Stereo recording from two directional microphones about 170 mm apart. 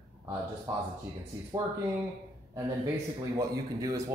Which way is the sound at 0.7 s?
15° right (ahead or behind).